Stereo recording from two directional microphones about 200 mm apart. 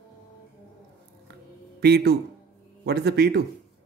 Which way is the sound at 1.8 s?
55° right (ahead or behind).